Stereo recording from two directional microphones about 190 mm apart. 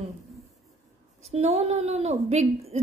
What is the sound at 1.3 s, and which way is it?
A woman's voice, 35° right (ahead or behind).